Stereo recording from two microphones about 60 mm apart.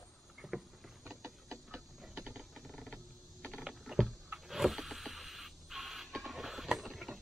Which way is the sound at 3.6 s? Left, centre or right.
Centre.